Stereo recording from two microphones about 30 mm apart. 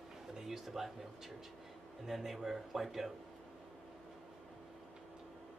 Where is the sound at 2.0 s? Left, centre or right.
Centre.